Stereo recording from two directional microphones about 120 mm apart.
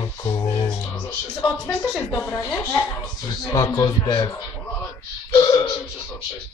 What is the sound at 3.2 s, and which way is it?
Speech, 30° left (ahead or behind).